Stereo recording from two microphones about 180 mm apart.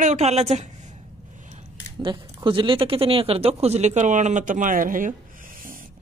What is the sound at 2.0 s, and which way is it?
Speech, 25° right (ahead or behind).